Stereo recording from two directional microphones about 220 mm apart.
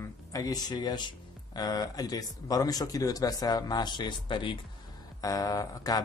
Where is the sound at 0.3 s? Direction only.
15° left (ahead or behind).